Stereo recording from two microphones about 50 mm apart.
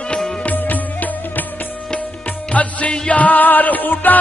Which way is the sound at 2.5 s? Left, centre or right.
Left.